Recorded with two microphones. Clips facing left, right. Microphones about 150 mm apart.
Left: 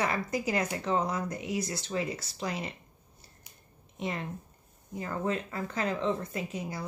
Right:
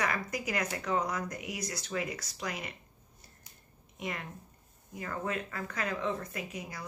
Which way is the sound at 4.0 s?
30° left (ahead or behind).